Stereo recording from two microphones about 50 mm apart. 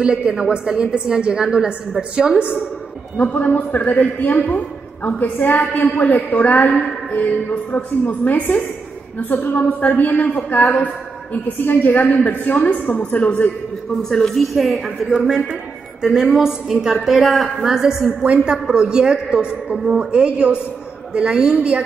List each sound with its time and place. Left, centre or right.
0.0 s a woman's voice: right
3.2 s a woman's voice: left
7.7 s a woman's voice: left
14.0 s a woman's voice: centre
18.2 s a woman's voice: right
18.5 s a woman's voice: centre
21.5 s a woman's voice: right